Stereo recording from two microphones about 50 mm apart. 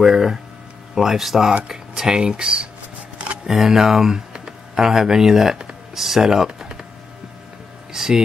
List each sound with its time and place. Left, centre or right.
0.0 s speech: centre
7.9 s speech: centre